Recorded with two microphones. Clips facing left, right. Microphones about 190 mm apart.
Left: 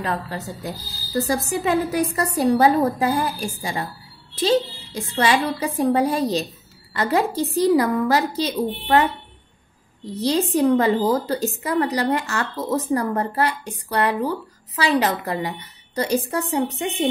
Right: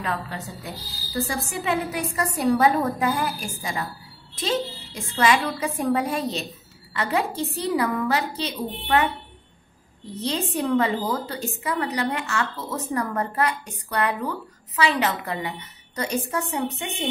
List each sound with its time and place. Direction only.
0.0 s a woman's voice: 35° left (ahead or behind)
10.2 s a woman's voice: 35° left (ahead or behind)